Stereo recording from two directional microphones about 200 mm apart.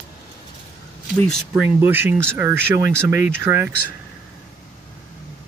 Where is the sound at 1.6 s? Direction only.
10° right (ahead or behind).